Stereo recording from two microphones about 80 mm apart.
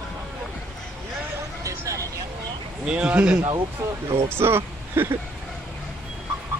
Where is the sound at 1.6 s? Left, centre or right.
Right.